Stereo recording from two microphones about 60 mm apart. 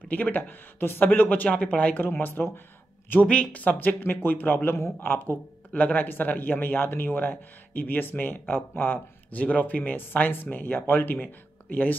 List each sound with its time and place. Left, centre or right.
0.1 s speech: left
3.3 s speech: left